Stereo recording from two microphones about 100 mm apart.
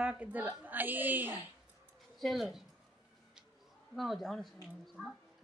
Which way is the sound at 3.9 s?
Centre (ahead or behind).